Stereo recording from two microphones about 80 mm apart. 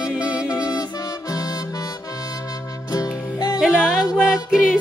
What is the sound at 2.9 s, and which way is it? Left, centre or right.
Music, left.